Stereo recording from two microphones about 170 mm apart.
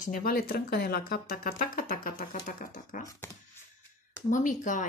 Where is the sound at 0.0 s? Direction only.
60° left (ahead or behind).